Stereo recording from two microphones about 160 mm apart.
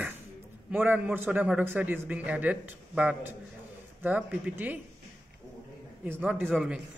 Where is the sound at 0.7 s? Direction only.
10° right (ahead or behind).